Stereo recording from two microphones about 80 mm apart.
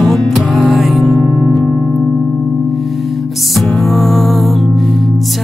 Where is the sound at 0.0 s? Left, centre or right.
Centre.